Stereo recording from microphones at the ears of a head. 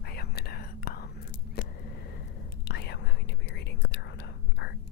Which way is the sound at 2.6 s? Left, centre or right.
Left.